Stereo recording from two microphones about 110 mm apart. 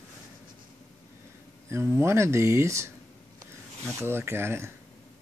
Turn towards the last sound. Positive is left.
turn(degrees=-25)  # may be behind; listen again after turning